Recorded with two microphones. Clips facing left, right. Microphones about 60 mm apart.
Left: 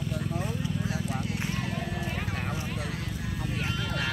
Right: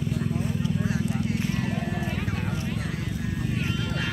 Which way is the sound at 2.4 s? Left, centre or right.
Centre.